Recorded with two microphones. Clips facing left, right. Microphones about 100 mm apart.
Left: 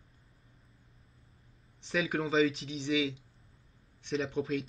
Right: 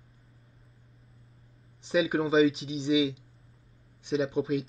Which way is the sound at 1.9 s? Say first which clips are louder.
Right 6 dB; 5° right (ahead or behind).